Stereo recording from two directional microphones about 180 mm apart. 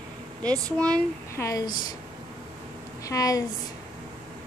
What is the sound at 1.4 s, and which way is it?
Speech, 20° left (ahead or behind).